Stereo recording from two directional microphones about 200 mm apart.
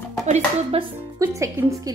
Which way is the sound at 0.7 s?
20° right (ahead or behind).